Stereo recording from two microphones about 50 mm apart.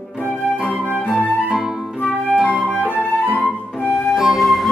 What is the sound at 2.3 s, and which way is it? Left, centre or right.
Flute, centre.